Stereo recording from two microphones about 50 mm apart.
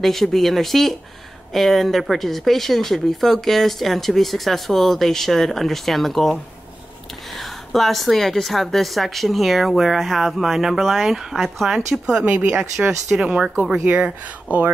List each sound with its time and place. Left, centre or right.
0.0 s speech: centre
12.1 s speech: centre